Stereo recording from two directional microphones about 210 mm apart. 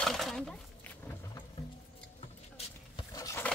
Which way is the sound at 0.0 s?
Centre (ahead or behind).